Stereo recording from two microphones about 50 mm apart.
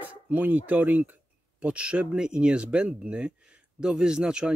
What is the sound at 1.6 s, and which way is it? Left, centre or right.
Speech, right.